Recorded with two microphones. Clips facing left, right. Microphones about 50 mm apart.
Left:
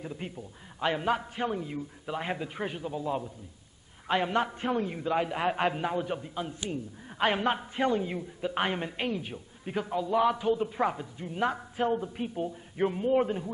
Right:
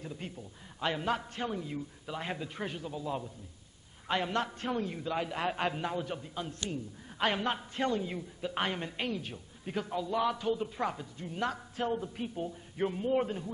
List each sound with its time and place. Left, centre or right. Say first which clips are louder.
0.0 s a man's voice: left 4 dB; centre